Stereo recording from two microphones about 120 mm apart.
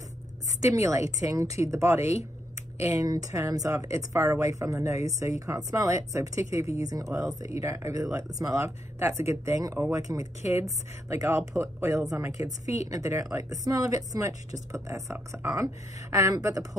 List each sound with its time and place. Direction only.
0.6 s speech: 25° right (ahead or behind)